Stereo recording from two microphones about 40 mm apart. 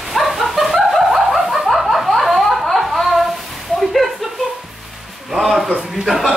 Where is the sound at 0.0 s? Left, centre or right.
Centre.